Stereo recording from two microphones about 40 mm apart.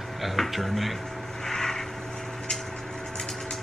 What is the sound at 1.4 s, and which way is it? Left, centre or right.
Vehicle, centre.